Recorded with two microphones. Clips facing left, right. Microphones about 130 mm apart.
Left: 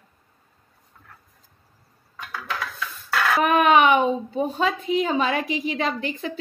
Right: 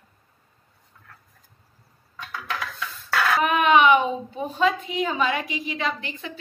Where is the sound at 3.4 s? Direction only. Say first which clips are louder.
Left 2 dB; 40° left (ahead or behind).